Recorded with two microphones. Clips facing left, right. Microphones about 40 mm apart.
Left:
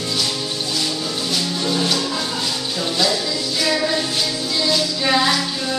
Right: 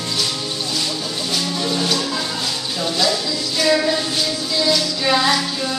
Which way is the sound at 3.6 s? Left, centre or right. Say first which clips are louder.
Right 4 dB; centre.